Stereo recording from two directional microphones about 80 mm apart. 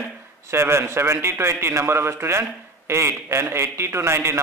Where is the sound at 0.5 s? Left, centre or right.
Right.